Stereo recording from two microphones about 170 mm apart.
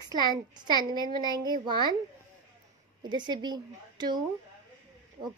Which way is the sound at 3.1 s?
25° right (ahead or behind).